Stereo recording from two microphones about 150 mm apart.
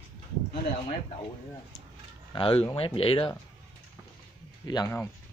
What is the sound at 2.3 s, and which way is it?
Speech, 35° left (ahead or behind).